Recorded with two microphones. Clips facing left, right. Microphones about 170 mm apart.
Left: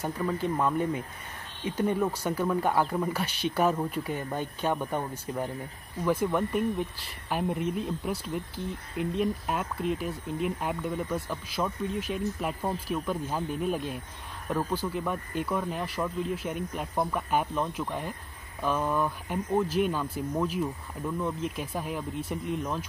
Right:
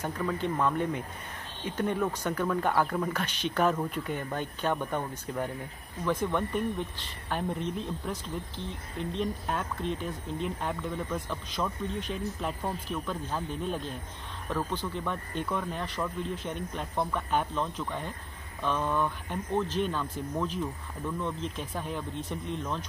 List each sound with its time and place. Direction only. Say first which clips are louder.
0.0 s speech: left 1 dB; 10° left (ahead or behind)